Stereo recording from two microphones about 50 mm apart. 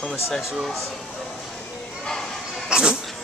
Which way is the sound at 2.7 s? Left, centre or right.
Centre.